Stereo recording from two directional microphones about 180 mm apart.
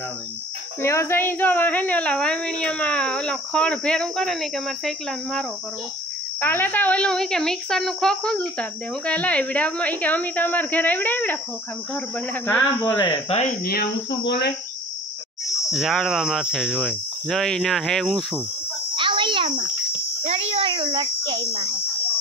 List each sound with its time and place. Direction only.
0.8 s a woman's voice: 15° left (ahead or behind)
13.0 s speech: 25° left (ahead or behind)
13.6 s speech: 60° left (ahead or behind)
15.4 s insect: 15° left (ahead or behind)
15.7 s a woman's voice: centre (ahead or behind)
18.9 s insect: 30° right (ahead or behind)